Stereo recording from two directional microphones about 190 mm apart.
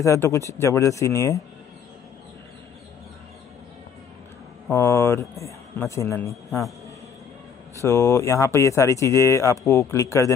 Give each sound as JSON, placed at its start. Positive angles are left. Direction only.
{"t": 0.0, "sound": "speech", "side_deg": 15}
{"t": 4.6, "sound": "speech", "side_deg": 15}
{"t": 7.8, "sound": "speech", "side_deg": 15}